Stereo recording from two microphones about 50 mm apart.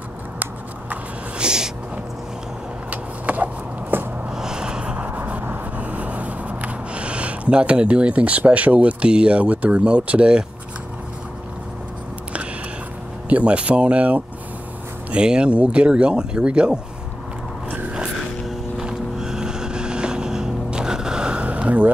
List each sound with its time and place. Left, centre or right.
1.4 s a sound: centre
2.9 s vehicle: right
3.9 s a sound: right
4.3 s vehicle: centre
13.3 s speech: right
18.5 s vehicle: centre; by 21.9 s right